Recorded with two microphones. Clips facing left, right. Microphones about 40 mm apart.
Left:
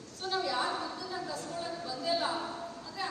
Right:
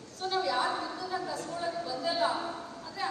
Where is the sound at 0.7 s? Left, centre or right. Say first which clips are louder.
Right 3 dB; centre.